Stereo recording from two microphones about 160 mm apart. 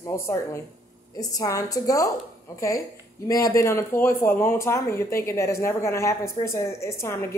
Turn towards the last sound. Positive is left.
turn(degrees=15)  # may be behind; listen again after turning